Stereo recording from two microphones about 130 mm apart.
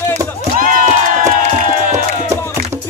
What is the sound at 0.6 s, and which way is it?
Crowd, 65° right (ahead or behind).